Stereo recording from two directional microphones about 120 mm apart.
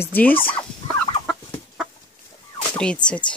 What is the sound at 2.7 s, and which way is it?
Speech, 10° left (ahead or behind).